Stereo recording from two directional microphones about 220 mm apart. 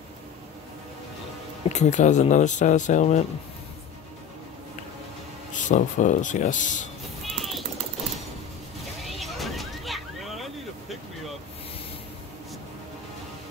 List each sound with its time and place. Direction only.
1.7 s speech: 30° left (ahead or behind)
5.5 s speech: 35° left (ahead or behind)
7.2 s mechanisms: centre (ahead or behind)
9.0 s a sound: centre (ahead or behind)